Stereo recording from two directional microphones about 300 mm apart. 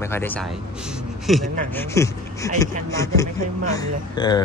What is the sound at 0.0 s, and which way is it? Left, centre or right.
Speech, centre.